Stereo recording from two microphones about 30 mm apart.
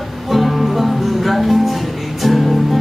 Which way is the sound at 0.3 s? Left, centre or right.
Centre.